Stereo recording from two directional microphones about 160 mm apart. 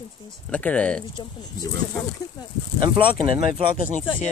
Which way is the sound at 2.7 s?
30° right (ahead or behind).